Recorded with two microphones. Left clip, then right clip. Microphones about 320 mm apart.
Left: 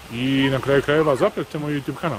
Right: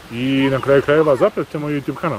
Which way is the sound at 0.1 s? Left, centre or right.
Centre.